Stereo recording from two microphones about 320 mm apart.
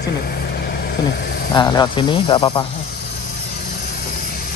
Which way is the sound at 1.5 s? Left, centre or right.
Centre.